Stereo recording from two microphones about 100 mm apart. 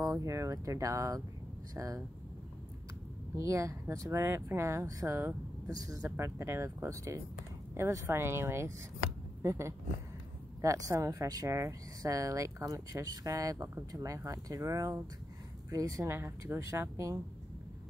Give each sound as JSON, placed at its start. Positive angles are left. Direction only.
{"t": 0.0, "sound": "speech", "side_deg": -35}
{"t": 3.3, "sound": "speech", "side_deg": -30}